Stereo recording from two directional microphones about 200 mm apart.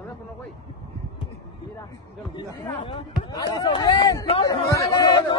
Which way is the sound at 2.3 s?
25° left (ahead or behind).